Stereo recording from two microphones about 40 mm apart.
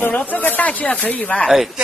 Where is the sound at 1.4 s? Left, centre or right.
Centre.